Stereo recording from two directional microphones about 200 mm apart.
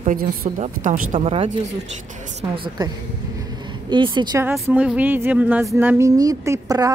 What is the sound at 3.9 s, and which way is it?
Speech, 20° right (ahead or behind).